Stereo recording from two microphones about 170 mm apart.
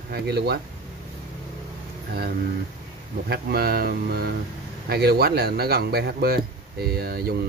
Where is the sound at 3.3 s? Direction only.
65° right (ahead or behind).